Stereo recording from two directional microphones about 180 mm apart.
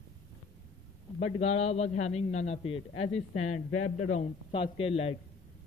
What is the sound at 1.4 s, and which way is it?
A man's voice, 35° left (ahead or behind).